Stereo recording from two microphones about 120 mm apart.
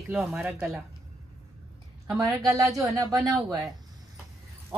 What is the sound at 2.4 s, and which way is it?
Speech, 30° right (ahead or behind).